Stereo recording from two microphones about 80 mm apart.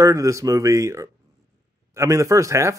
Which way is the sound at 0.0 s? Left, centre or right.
Right.